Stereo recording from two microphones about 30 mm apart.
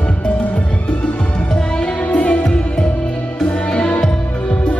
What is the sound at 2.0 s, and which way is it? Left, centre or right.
Music, left.